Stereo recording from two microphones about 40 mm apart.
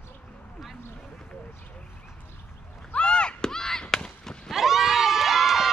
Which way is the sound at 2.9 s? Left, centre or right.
Left.